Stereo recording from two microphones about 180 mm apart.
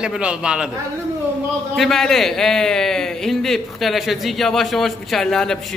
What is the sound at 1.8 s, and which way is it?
A man's voice, 5° left (ahead or behind).